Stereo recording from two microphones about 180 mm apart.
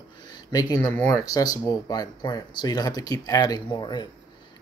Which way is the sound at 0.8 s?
10° left (ahead or behind).